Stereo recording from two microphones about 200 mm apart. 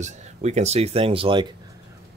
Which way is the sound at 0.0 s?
35° right (ahead or behind).